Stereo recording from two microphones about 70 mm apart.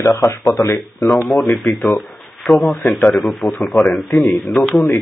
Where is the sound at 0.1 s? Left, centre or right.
Left.